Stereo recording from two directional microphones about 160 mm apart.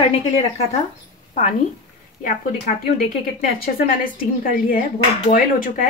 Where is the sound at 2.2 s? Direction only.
55° left (ahead or behind).